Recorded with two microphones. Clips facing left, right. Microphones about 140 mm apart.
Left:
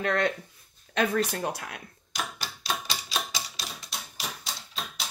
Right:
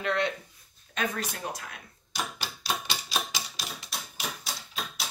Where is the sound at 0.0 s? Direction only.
45° left (ahead or behind).